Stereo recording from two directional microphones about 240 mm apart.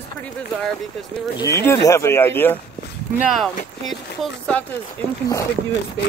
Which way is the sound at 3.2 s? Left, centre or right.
Centre.